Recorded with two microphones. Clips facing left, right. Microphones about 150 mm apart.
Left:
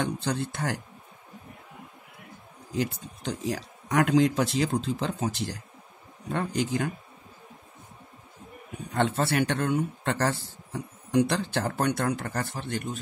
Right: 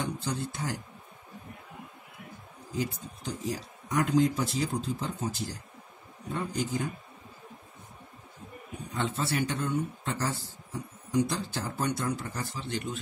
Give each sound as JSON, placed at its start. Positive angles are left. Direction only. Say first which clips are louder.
{"t": 0.0, "sound": "speech", "louder": "left 4 dB", "side_deg": 70}
{"t": 2.7, "sound": "speech", "louder": "left 3 dB", "side_deg": 70}
{"t": 8.9, "sound": "a man's voice", "louder": "left 6 dB", "side_deg": 65}